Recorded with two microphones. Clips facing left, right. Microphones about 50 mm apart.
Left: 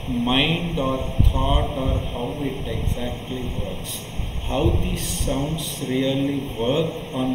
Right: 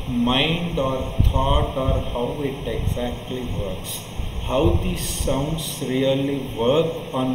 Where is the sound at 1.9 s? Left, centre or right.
Right.